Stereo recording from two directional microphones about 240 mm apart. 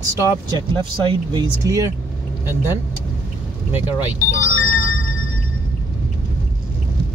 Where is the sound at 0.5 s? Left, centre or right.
Centre.